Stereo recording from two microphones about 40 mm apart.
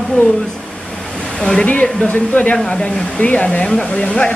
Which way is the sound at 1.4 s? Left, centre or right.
Left.